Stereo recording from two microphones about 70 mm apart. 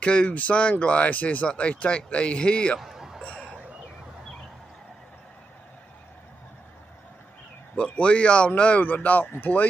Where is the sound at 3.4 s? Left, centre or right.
Centre.